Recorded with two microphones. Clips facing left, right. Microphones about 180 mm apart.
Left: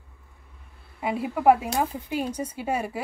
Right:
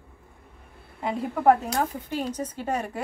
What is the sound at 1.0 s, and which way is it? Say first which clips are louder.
A woman's voice: left 1 dB; 5° left (ahead or behind).